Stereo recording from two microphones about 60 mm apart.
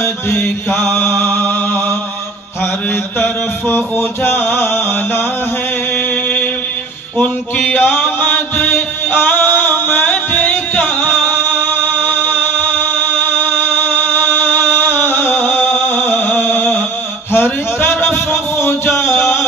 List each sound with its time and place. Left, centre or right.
0.0 s mantra: left
7.2 s music: left
17.3 s a sound: left